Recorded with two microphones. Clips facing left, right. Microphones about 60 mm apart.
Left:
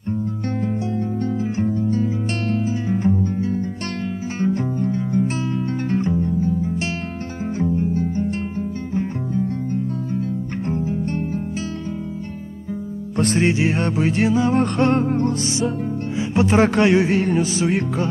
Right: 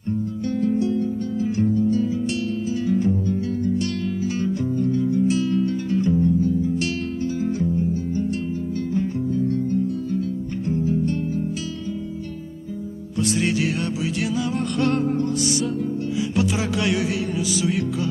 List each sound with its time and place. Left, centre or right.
0.6 s music: left
13.2 s music: left
13.5 s music: left
16.5 s music: left